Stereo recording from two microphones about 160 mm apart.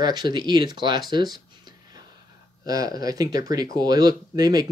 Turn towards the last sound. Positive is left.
turn(degrees=-25)  # may be behind; listen again after turning